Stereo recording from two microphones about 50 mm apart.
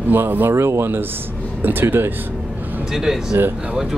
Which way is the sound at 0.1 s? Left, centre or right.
Right.